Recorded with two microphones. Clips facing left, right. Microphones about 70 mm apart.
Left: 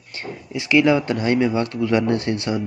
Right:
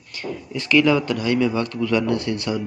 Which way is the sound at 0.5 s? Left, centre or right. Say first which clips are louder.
Left 1 dB; left.